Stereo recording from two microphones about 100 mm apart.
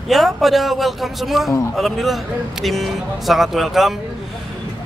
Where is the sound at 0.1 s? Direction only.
Centre (ahead or behind).